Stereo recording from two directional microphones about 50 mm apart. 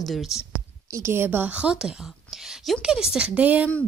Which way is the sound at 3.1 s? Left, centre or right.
Right.